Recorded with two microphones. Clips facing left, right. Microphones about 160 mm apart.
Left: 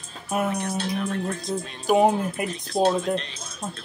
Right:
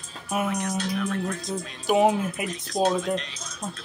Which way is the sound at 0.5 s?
30° left (ahead or behind).